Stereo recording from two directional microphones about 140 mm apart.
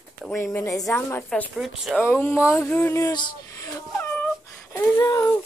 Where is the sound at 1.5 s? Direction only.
Centre (ahead or behind).